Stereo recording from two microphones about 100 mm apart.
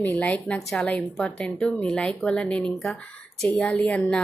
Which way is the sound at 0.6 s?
Centre (ahead or behind).